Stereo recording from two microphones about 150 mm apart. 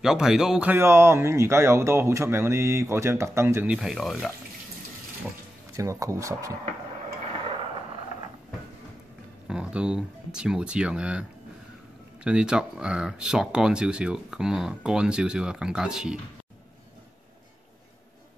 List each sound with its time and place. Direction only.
0.0 s speech: 5° right (ahead or behind)
5.8 s speech: 20° right (ahead or behind)
9.5 s speech: 5° right (ahead or behind)